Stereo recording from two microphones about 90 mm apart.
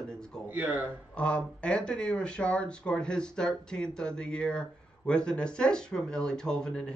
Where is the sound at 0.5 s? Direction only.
20° right (ahead or behind).